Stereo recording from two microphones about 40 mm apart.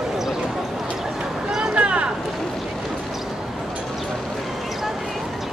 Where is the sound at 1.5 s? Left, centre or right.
Right.